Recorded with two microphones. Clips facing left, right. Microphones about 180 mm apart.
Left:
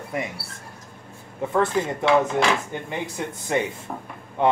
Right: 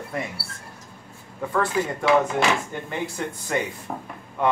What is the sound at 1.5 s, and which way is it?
Speech, 20° left (ahead or behind).